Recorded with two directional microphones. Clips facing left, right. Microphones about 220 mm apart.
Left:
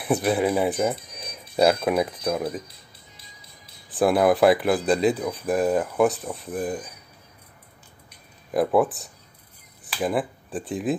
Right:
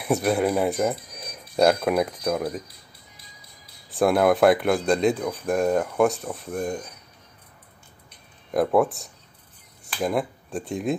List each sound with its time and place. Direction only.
0.0 s speech: centre (ahead or behind)
2.7 s music: 25° left (ahead or behind)
3.9 s speech: centre (ahead or behind)
8.1 s a sound: centre (ahead or behind)
9.8 s speech: centre (ahead or behind)